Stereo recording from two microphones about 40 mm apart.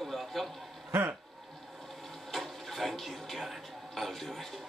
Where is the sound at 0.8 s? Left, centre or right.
Right.